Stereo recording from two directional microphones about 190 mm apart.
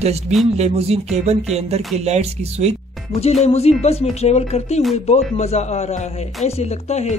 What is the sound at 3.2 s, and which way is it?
Speech, 35° left (ahead or behind).